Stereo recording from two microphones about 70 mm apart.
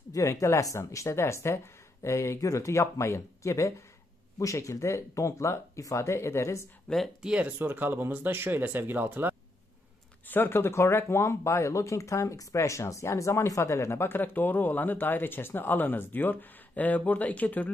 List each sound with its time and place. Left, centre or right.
0.1 s speech: left
7.2 s speech: centre
7.5 s speech: right
10.2 s speech: left